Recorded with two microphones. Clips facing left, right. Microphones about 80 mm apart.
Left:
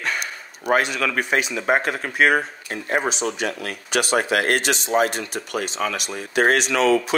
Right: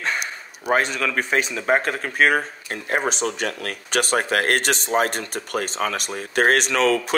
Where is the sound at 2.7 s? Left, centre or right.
Right.